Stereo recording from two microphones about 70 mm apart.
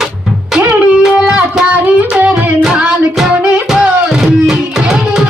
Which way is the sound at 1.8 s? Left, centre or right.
Right.